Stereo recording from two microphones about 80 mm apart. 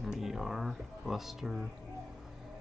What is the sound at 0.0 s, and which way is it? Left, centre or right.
Speech, centre.